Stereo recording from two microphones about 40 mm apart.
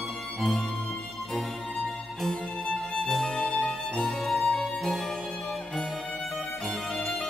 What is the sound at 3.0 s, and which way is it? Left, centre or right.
Music, centre.